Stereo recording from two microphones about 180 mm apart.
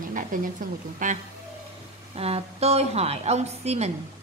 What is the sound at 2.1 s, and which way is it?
A woman's voice, 35° right (ahead or behind).